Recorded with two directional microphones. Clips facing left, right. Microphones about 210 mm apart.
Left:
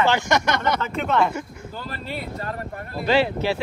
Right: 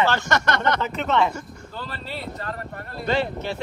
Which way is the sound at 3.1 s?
90° left.